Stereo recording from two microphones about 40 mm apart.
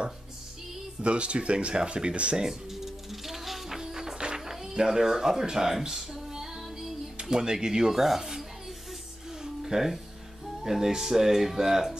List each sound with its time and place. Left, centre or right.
1.0 s speech: right
2.4 s music: centre
4.7 s speech: centre
9.4 s music: centre
10.6 s speech: centre